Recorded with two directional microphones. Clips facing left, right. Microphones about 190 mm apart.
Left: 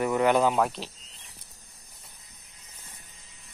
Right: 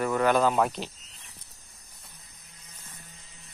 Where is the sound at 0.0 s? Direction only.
20° left (ahead or behind).